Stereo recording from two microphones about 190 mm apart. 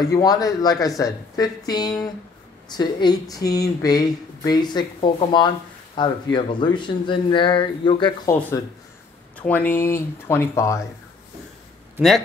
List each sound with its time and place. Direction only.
0.0 s speech: 20° left (ahead or behind)
8.3 s speech: 10° left (ahead or behind)